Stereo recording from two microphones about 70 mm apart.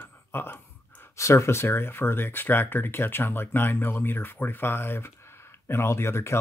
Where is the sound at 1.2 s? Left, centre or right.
Left.